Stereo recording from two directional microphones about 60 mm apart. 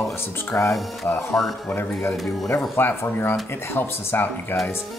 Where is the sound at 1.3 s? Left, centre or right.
Centre.